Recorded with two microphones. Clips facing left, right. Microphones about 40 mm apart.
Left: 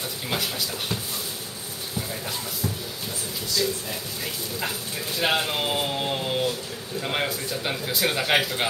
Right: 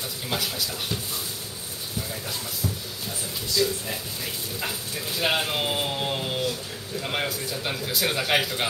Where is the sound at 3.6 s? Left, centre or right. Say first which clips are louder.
Right 3 dB; centre.